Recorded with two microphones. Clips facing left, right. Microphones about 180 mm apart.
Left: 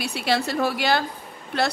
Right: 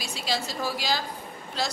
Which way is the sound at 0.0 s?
60° left (ahead or behind).